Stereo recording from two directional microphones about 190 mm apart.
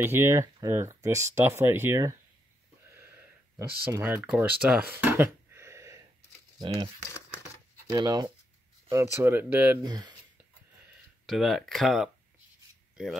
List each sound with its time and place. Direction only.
0.0 s speech: 15° right (ahead or behind)
2.9 s a sound: 10° right (ahead or behind)
6.6 s speech: 20° right (ahead or behind)
7.9 s speech: 20° right (ahead or behind)
9.8 s speech: 20° right (ahead or behind)
11.2 s speech: centre (ahead or behind)